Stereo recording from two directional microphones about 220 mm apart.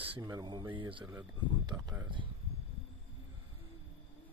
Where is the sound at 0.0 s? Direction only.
20° right (ahead or behind).